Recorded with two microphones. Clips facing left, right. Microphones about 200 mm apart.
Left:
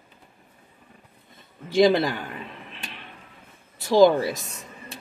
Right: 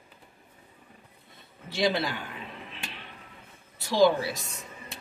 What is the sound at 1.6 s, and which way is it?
Speech, 45° left (ahead or behind).